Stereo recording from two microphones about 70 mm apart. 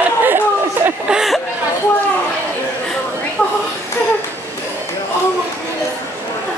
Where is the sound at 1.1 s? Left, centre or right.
Centre.